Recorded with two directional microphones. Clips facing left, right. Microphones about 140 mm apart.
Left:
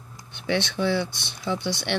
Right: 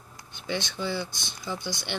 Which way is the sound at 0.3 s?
70° left (ahead or behind).